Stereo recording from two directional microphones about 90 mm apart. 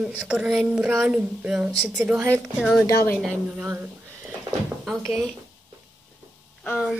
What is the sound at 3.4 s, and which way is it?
Speech, 20° right (ahead or behind).